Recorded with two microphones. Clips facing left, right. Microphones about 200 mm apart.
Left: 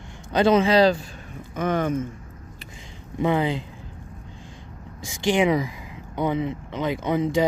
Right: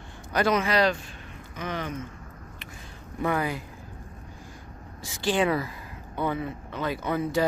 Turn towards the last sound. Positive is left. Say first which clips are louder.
# left 4 dB
turn(degrees=20)  # may be behind; listen again after turning